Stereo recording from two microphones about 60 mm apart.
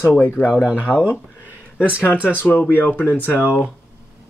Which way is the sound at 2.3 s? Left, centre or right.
Left.